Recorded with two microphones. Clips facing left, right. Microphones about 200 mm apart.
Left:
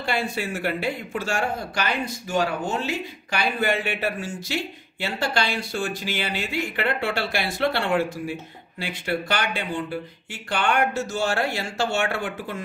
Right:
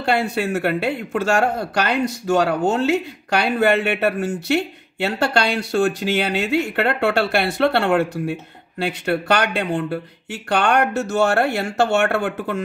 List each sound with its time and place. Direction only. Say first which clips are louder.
0.0 s speech: right 6 dB; 65° right (ahead or behind)